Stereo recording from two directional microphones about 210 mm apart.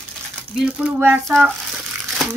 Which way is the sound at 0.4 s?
5° right (ahead or behind).